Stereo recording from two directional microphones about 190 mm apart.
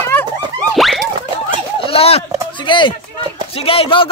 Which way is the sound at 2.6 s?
25° left (ahead or behind).